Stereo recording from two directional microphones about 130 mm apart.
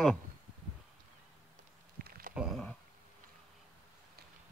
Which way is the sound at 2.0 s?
90° right.